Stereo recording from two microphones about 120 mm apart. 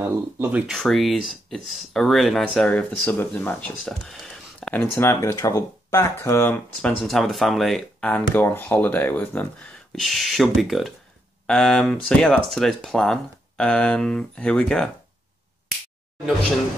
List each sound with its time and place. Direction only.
0.0 s speech: 15° right (ahead or behind)
0.7 s speech: centre (ahead or behind)
3.8 s a sound: 5° left (ahead or behind)
4.9 s speech: 20° left (ahead or behind)
7.1 s speech: centre (ahead or behind)
8.1 s speech: 15° left (ahead or behind)
9.9 s speech: centre (ahead or behind)